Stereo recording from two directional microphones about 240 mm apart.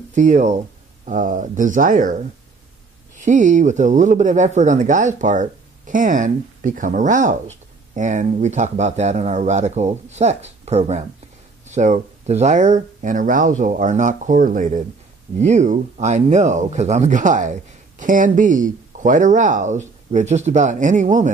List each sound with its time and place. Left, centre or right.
0.1 s speech: right